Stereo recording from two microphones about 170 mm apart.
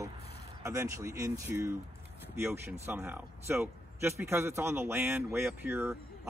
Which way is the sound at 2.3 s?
15° right (ahead or behind).